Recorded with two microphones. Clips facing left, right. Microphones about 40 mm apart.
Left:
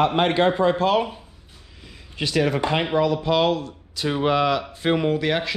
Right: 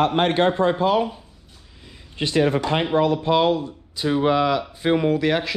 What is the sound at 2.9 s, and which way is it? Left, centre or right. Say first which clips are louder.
Speech: right 4 dB; right.